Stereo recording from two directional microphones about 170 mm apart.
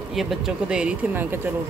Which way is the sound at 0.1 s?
Centre (ahead or behind).